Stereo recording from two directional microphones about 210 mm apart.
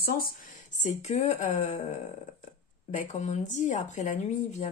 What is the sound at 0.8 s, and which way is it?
Speech, 35° left (ahead or behind).